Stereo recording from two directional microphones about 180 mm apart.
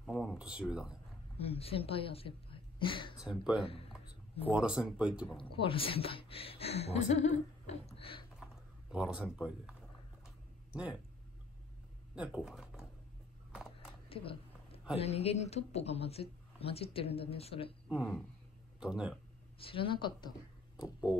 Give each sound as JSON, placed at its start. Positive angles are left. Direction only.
{"t": 0.0, "sound": "speech", "side_deg": 0}
{"t": 1.4, "sound": "a woman's voice", "side_deg": 35}
{"t": 3.2, "sound": "speech", "side_deg": -5}
{"t": 5.4, "sound": "speech", "side_deg": 30}
{"t": 7.2, "sound": "a sound", "side_deg": 40}
{"t": 8.9, "sound": "speech", "side_deg": -5}
{"t": 12.2, "sound": "speech", "side_deg": -5}
{"t": 13.5, "sound": "a sound", "side_deg": -5}
{"t": 14.0, "sound": "a sound", "side_deg": 30}
{"t": 15.0, "sound": "speech", "side_deg": 35}
{"t": 17.8, "sound": "speech", "side_deg": 0}
{"t": 19.6, "sound": "speech", "side_deg": 30}